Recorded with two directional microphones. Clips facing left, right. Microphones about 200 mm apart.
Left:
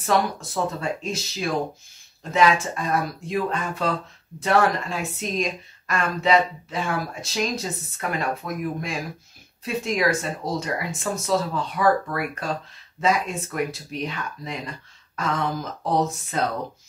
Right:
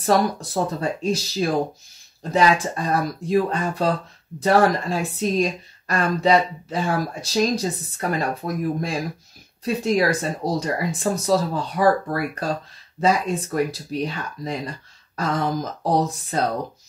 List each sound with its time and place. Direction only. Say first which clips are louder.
0.0 s speech: right 3 dB; 35° right (ahead or behind)